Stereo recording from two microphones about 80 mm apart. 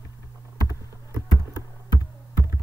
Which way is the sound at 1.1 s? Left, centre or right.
Left.